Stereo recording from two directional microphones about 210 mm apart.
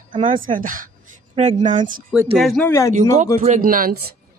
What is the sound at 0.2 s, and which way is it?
A woman's voice, 40° right (ahead or behind).